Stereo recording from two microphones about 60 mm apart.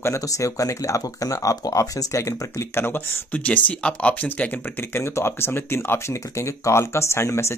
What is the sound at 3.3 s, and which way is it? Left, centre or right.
Speech, left.